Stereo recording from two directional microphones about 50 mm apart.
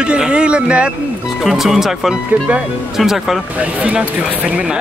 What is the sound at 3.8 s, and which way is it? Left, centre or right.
Speech, right.